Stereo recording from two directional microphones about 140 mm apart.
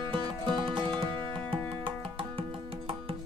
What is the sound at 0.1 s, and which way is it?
Music, 35° right (ahead or behind).